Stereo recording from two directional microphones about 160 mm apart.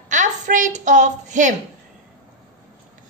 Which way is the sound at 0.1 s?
50° right (ahead or behind).